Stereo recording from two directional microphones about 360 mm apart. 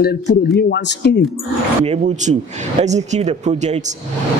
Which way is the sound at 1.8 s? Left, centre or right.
Centre.